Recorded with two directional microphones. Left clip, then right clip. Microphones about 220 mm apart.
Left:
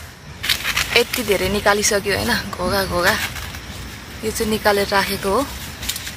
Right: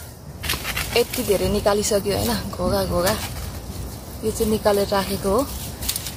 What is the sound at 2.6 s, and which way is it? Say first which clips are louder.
Speech: left 2 dB; 25° left (ahead or behind).